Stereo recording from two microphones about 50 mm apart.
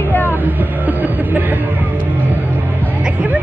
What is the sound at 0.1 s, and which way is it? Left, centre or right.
Music, left.